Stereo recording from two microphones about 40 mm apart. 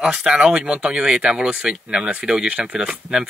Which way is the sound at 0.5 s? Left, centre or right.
Right.